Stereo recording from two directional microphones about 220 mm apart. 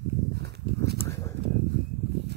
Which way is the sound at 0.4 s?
50° right (ahead or behind).